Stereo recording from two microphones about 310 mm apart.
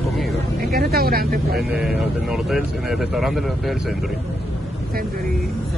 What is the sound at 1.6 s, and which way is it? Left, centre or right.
Speech, centre.